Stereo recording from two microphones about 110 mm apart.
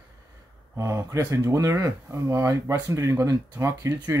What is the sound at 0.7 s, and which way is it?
Speech, 30° right (ahead or behind).